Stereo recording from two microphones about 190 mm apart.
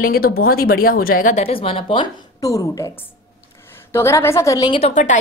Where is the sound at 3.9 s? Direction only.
15° left (ahead or behind); by 5.2 s 40° left (ahead or behind).